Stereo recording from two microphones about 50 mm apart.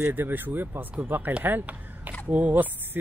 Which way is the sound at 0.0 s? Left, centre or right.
Right.